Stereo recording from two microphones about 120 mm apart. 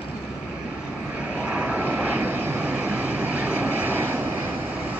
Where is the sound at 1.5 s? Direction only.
10° right (ahead or behind).